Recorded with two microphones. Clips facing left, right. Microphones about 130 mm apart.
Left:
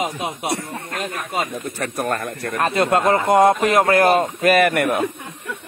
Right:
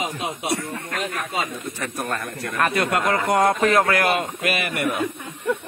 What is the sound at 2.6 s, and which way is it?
Speech, 25° left (ahead or behind).